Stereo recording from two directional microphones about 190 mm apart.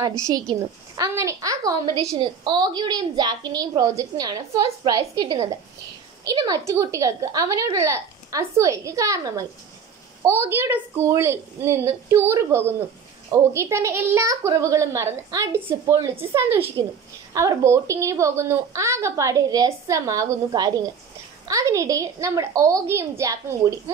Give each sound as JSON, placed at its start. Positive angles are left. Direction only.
{"t": 0.3, "sound": "a woman's voice", "side_deg": -20}